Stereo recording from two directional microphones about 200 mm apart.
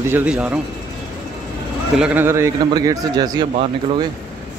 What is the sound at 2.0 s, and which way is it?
A man's voice, 10° right (ahead or behind).